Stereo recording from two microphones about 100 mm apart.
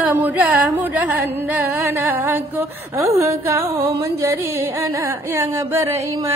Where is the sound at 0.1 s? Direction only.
15° right (ahead or behind).